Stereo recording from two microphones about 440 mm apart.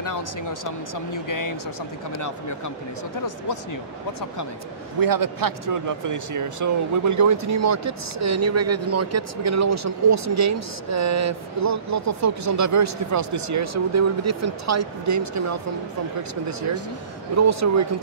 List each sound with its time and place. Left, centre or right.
0.0 s speech: left
5.0 s speech: right